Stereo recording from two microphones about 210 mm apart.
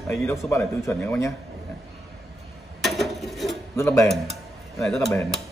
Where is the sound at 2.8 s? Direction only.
Centre (ahead or behind).